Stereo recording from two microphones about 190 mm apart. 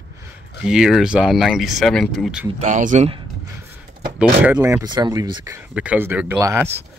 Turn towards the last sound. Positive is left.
turn(degrees=-15)  # may be behind; listen again after turning